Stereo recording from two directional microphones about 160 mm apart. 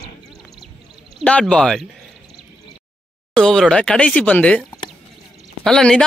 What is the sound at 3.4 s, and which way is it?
A man's voice, 5° left (ahead or behind).